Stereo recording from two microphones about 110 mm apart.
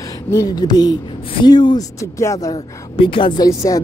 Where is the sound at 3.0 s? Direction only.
50° left (ahead or behind).